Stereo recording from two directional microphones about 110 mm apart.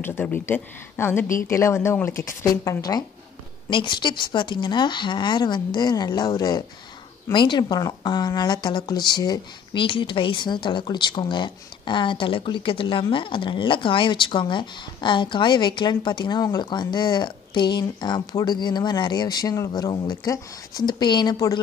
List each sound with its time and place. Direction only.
0.0 s a woman's voice: 20° left (ahead or behind); by 3.1 s 35° left (ahead or behind)
3.7 s a woman's voice: 45° left (ahead or behind)
9.8 s speech: 50° left (ahead or behind)